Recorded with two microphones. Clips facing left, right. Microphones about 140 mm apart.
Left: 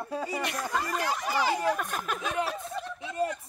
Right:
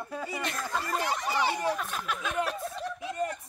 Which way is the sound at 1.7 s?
45° left (ahead or behind).